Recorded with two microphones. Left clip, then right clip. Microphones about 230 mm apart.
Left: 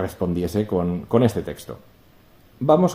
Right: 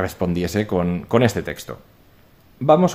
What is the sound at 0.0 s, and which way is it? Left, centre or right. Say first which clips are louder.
Speech: right 2 dB; right.